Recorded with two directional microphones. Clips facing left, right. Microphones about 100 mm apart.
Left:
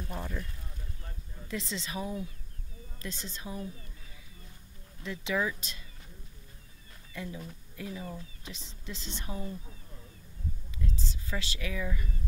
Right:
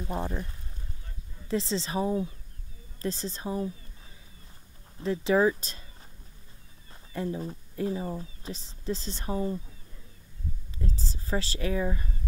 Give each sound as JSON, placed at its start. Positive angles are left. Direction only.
{"t": 0.0, "sound": "speech", "side_deg": -30}
{"t": 1.5, "sound": "a woman's voice", "side_deg": -30}
{"t": 5.0, "sound": "a woman's voice", "side_deg": -35}
{"t": 7.2, "sound": "a woman's voice", "side_deg": -35}
{"t": 10.8, "sound": "a woman's voice", "side_deg": -35}